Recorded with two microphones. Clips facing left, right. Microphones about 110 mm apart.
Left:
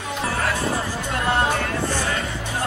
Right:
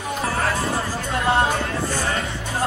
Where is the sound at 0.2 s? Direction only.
30° right (ahead or behind).